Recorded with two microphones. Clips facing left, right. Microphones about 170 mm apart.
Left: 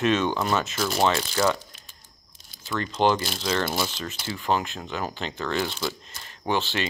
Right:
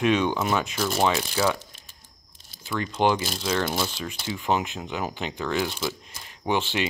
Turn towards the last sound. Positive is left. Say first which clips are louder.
# right 1 dB
turn(degrees=-15)  # may be behind; listen again after turning